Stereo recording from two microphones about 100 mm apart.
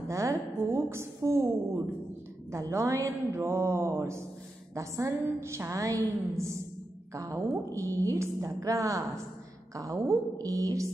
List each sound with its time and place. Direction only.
0.1 s a woman's voice: 30° right (ahead or behind)